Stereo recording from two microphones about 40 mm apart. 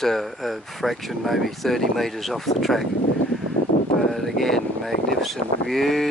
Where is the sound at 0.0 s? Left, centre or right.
Centre.